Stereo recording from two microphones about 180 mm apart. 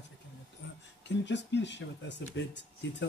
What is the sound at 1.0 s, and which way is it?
Speech, 75° left (ahead or behind).